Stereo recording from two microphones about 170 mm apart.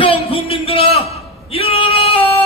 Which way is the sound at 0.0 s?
35° left (ahead or behind).